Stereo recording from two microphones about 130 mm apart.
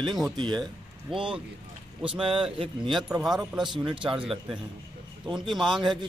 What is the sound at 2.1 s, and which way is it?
Speech, 40° right (ahead or behind).